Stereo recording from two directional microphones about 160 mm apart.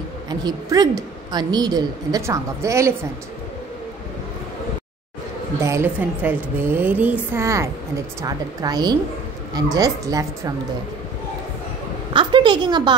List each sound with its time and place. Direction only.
0.3 s a woman's voice: 25° right (ahead or behind)
5.6 s a woman's voice: 15° right (ahead or behind)
12.1 s a sound: 30° right (ahead or behind)